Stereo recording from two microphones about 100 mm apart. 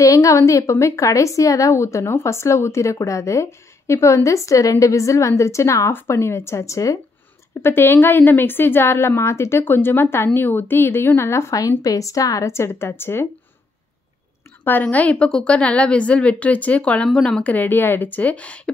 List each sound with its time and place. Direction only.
0.0 s a woman's voice: 35° left (ahead or behind)
7.6 s a woman's voice: 20° left (ahead or behind)
14.6 s a woman's voice: 20° left (ahead or behind)